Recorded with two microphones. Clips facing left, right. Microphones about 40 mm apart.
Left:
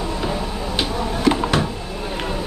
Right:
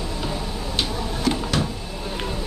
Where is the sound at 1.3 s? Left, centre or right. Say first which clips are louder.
Left 5 dB; left.